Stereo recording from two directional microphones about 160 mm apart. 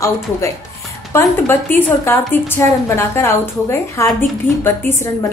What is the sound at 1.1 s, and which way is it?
A woman's voice, 15° left (ahead or behind).